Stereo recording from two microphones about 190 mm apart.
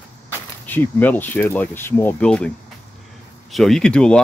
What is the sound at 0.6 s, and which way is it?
Speech, 10° left (ahead or behind).